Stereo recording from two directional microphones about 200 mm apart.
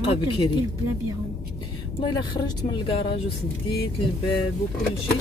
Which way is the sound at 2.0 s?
25° left (ahead or behind).